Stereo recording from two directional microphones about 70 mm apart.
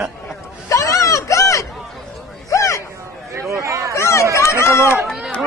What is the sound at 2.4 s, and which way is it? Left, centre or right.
Music, left.